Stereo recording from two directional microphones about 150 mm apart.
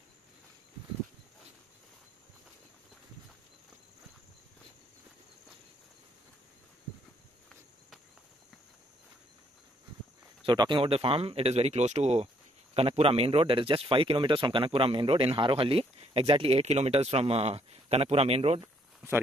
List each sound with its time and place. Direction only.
10.4 s speech: 30° right (ahead or behind)